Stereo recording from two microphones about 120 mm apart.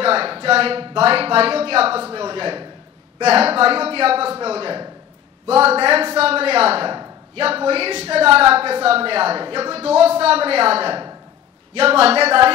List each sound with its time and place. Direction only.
0.0 s a woman's voice: 50° right (ahead or behind)
3.3 s a woman's voice: 55° right (ahead or behind)
6.1 s a woman's voice: 55° right (ahead or behind)